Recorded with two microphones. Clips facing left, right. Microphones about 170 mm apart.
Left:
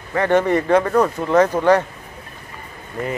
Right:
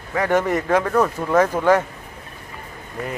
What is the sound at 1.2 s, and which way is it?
Speech, 5° right (ahead or behind).